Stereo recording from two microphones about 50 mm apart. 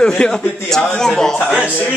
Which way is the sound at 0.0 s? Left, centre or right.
Centre.